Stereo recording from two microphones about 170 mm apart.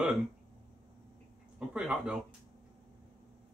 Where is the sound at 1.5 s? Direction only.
5° right (ahead or behind).